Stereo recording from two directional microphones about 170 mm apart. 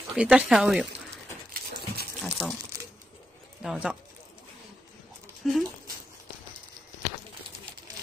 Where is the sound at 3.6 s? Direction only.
5° right (ahead or behind).